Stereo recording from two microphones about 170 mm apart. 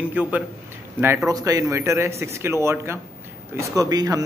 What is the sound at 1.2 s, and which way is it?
Speech, 20° right (ahead or behind).